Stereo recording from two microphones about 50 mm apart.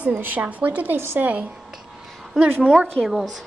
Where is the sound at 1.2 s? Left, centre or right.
Right.